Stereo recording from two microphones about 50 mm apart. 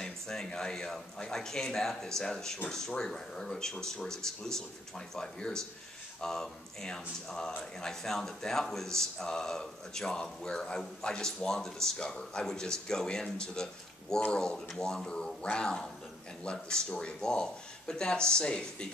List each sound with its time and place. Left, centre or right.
0.0 s speech: centre